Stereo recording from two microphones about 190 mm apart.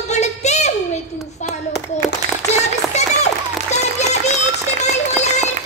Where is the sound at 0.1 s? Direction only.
35° left (ahead or behind).